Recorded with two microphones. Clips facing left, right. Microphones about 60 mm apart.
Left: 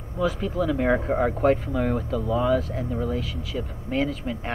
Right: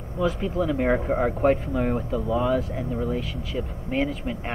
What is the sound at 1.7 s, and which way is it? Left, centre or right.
Speech, centre.